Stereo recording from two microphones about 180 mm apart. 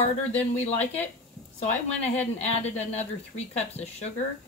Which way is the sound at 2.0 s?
35° left (ahead or behind).